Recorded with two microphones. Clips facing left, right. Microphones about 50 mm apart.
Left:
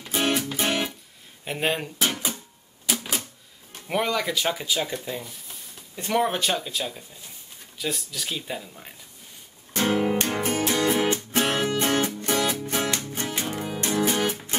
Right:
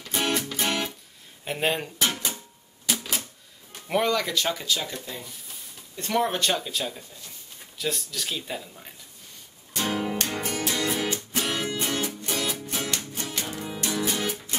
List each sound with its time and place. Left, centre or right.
0.0 s music: centre
1.4 s speech: centre
2.0 s a sound: centre
2.9 s typewriter: centre
3.8 s speech: centre
9.8 s music: left
13.3 s music: left